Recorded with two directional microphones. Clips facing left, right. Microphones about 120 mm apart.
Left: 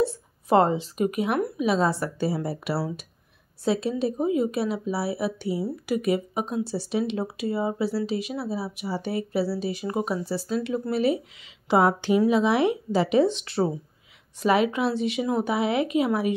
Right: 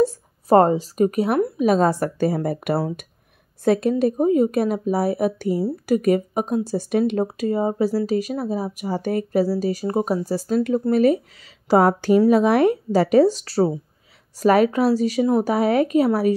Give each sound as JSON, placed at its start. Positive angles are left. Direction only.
{"t": 0.0, "sound": "a woman's voice", "side_deg": -40}